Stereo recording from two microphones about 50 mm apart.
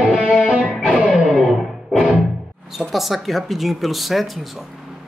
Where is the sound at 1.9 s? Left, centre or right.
Centre.